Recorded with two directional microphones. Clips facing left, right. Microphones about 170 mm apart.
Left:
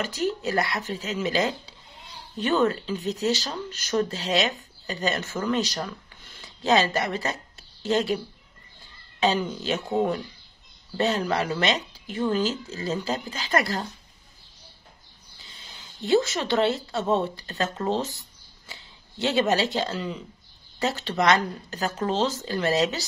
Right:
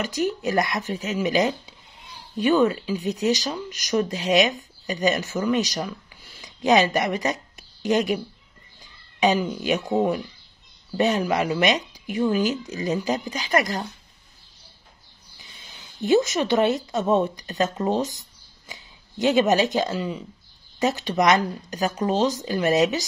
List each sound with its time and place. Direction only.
0.2 s speech: 15° right (ahead or behind)
9.2 s speech: 15° right (ahead or behind)
16.0 s speech: 15° right (ahead or behind)